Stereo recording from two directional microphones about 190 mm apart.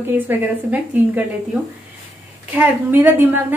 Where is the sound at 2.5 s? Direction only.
10° right (ahead or behind).